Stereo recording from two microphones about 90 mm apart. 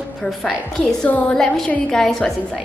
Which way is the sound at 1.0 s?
10° left (ahead or behind).